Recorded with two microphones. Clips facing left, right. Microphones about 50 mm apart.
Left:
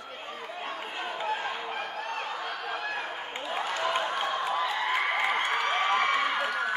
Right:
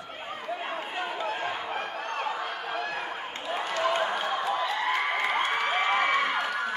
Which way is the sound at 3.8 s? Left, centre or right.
Centre.